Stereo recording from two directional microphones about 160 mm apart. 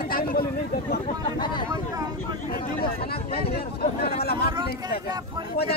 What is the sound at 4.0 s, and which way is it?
Chatter, 75° left (ahead or behind).